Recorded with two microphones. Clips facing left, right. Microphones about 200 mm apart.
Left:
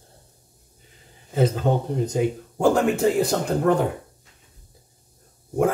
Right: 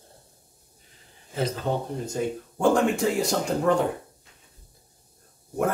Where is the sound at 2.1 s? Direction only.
15° left (ahead or behind).